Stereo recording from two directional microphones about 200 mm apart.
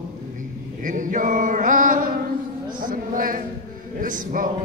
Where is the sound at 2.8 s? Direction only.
45° right (ahead or behind).